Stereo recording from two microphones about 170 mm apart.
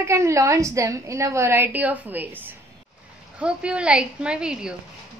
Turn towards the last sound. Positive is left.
turn(degrees=-5)  # may be behind; listen again after turning